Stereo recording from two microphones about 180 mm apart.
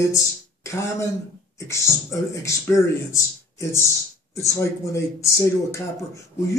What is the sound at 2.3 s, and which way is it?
Speech, 15° left (ahead or behind).